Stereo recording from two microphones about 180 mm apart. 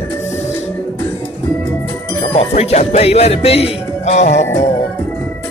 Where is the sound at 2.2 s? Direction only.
35° left (ahead or behind).